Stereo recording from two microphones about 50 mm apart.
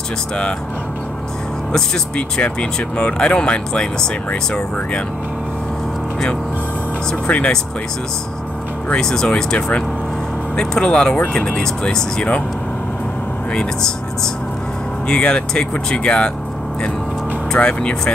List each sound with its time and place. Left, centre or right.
1.7 s speech: centre
7.1 s speech: left
8.8 s speech: centre
13.5 s speech: centre
17.6 s speech: left